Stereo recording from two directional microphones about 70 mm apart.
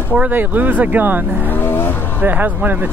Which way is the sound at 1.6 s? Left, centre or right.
Left.